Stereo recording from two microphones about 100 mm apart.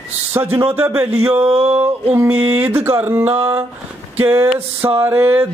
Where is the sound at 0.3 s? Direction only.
20° right (ahead or behind).